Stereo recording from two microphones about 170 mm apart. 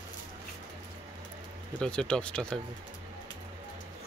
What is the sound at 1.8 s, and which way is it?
Speech, 5° left (ahead or behind).